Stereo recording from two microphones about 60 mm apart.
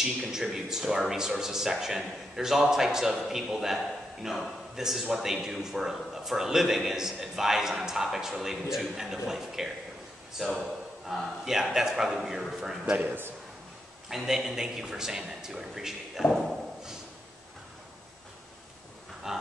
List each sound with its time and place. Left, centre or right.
0.0 s speech: centre
12.9 s a man's voice: right
14.0 s speech: centre
16.3 s speech: centre
19.2 s a sound: centre